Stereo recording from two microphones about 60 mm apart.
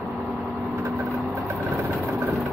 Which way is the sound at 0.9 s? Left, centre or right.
Right.